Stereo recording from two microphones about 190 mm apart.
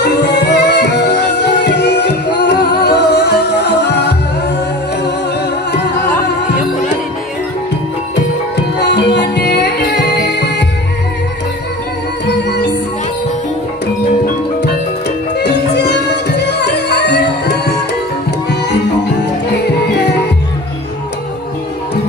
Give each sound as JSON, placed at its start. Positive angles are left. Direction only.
{"t": 0.0, "sound": "music", "side_deg": 60}
{"t": 8.9, "sound": "music", "side_deg": 65}
{"t": 15.3, "sound": "music", "side_deg": 60}